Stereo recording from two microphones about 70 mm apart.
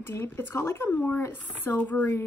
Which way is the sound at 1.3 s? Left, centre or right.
Left.